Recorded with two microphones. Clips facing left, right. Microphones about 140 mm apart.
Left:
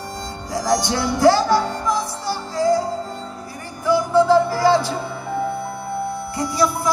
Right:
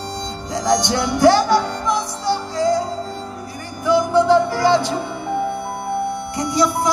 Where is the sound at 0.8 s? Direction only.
20° right (ahead or behind).